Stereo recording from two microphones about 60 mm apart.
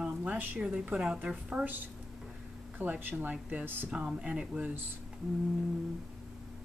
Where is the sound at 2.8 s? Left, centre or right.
Right.